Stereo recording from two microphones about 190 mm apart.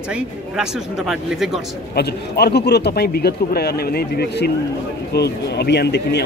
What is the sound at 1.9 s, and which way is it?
Speech, 55° left (ahead or behind).